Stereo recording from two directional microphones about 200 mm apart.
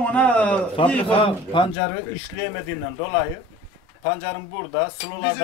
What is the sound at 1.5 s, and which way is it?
Speech, 25° left (ahead or behind).